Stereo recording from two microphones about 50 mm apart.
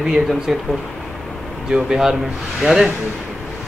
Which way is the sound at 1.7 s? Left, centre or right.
Centre.